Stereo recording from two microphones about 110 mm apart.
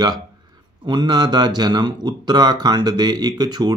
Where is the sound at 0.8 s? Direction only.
40° right (ahead or behind).